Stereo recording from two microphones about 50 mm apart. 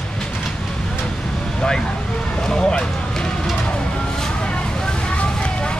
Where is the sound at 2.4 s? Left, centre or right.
Centre.